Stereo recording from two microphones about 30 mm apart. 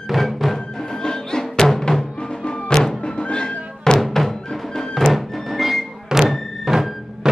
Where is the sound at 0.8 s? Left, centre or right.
Centre.